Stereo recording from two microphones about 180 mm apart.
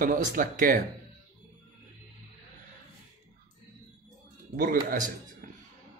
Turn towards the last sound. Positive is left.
turn(degrees=-50)  # may be behind; listen again after turning